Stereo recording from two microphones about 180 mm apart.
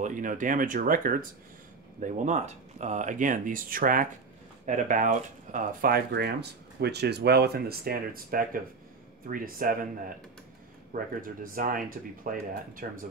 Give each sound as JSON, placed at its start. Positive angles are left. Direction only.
{"t": 0.0, "sound": "speech", "side_deg": -45}